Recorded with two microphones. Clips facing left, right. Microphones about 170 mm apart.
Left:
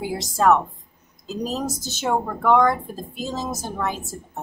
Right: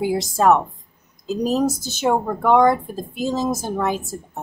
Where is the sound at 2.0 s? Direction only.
15° right (ahead or behind).